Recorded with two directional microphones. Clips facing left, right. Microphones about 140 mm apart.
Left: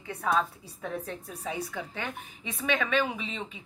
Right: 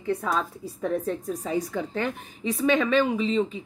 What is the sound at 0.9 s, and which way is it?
A woman's voice, 40° right (ahead or behind).